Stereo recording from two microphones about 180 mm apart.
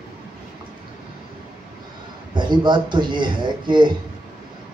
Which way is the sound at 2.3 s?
25° right (ahead or behind).